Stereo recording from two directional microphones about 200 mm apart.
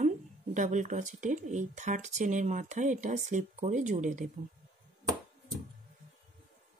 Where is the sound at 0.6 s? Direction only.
35° right (ahead or behind).